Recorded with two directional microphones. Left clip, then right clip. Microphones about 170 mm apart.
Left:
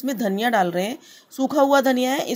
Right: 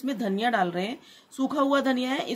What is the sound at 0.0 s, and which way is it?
Speech, 35° left (ahead or behind).